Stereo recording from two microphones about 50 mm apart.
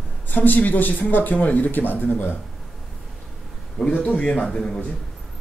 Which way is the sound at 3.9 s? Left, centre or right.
Left.